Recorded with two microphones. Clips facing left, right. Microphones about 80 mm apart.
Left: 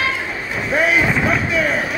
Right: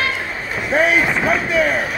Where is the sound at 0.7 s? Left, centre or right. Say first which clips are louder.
Right 1 dB; right.